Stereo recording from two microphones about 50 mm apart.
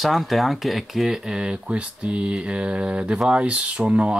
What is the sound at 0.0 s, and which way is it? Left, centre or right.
Speech, centre.